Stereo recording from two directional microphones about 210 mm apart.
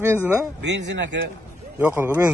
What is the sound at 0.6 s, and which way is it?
Speech, 55° right (ahead or behind).